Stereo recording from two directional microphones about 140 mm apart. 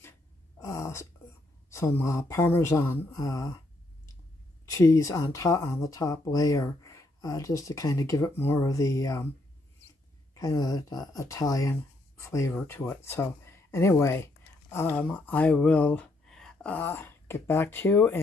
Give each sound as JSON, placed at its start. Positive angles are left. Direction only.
{"t": 0.6, "sound": "throat clearing", "side_deg": 25}
{"t": 1.7, "sound": "speech", "side_deg": 20}
{"t": 4.6, "sound": "speech", "side_deg": 25}
{"t": 10.3, "sound": "speech", "side_deg": 25}